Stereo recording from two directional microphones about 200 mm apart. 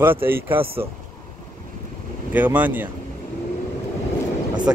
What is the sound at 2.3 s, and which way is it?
Speech, 10° right (ahead or behind).